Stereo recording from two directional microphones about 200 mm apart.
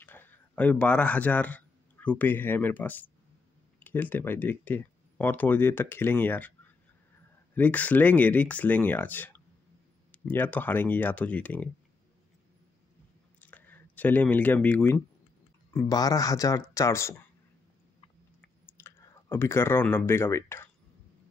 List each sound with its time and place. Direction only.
0.0 s speech: 10° left (ahead or behind)
7.5 s speech: 10° left (ahead or behind)
13.4 s speech: 10° left (ahead or behind)
18.8 s speech: 10° left (ahead or behind)